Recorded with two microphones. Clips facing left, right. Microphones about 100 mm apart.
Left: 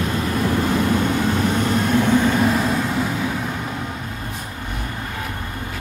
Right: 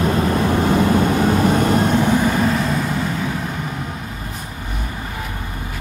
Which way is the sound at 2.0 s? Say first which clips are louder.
Even; 15° right (ahead or behind).